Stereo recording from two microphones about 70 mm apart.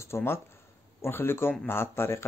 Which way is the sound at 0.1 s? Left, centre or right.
Left.